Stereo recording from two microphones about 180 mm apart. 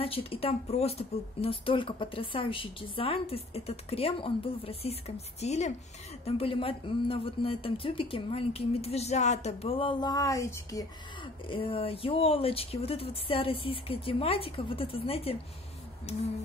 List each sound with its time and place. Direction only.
0.0 s speech: 30° left (ahead or behind)
11.4 s speech: 30° left (ahead or behind)